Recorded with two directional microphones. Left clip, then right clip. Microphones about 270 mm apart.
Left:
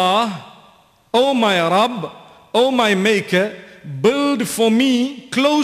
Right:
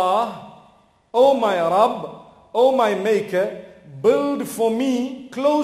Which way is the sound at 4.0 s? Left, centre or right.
Left.